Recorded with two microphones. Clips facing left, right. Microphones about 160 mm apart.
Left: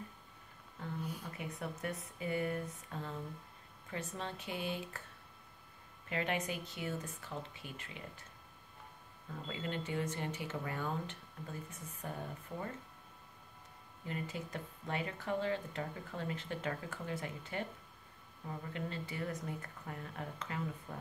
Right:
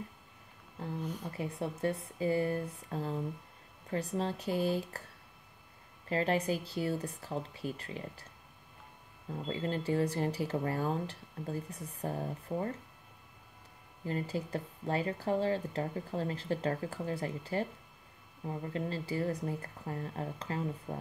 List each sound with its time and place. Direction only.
0.8 s a sound: 35° right (ahead or behind)
1.2 s a woman's voice: 30° right (ahead or behind)
6.0 s a woman's voice: 35° right (ahead or behind)
9.3 s a woman's voice: 35° right (ahead or behind)
14.0 s a woman's voice: 35° right (ahead or behind)